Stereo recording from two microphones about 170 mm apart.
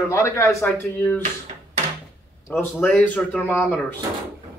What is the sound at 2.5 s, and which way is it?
A man's voice, 10° left (ahead or behind).